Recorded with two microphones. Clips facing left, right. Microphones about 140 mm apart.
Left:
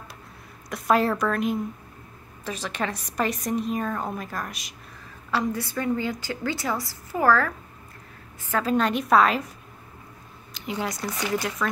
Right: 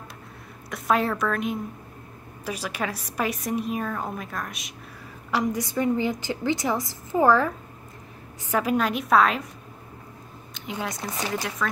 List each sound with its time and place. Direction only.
0.7 s a woman's voice: centre (ahead or behind)
5.3 s a woman's voice: 15° right (ahead or behind)
8.8 s a woman's voice: centre (ahead or behind)
10.5 s a woman's voice: centre (ahead or behind)